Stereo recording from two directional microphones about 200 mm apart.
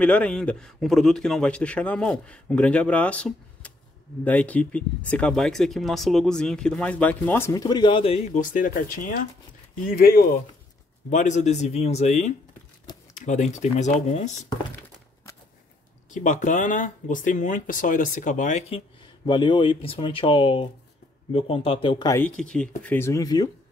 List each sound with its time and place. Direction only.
0.0 s a man's voice: 5° left (ahead or behind); by 10.2 s 50° left (ahead or behind)
11.1 s speech: 35° left (ahead or behind)
16.1 s speech: 40° left (ahead or behind)
19.2 s speech: 25° left (ahead or behind)
22.4 s a man's voice: 5° left (ahead or behind)